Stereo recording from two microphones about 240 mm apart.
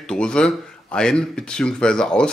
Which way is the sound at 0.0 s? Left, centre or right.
Centre.